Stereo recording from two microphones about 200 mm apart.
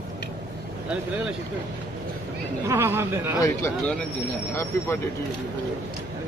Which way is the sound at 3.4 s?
15° left (ahead or behind).